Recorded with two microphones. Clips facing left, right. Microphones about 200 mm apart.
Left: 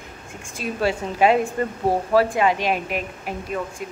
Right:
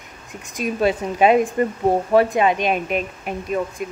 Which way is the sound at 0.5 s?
20° right (ahead or behind).